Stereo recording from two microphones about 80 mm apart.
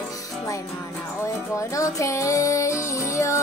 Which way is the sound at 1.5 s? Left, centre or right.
Left.